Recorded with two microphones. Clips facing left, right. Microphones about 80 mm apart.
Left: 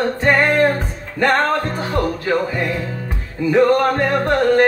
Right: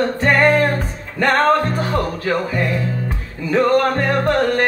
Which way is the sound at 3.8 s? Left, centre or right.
Centre.